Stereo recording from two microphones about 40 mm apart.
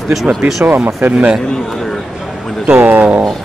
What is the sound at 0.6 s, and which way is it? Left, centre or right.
Speech, right.